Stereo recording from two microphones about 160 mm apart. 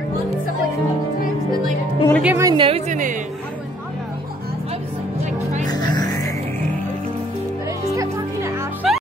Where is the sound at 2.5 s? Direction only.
30° right (ahead or behind).